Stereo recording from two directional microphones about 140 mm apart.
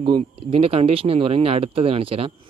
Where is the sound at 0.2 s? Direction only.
45° right (ahead or behind).